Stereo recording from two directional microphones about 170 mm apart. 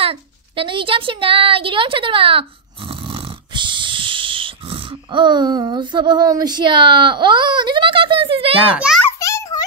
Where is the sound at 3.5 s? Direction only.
30° right (ahead or behind).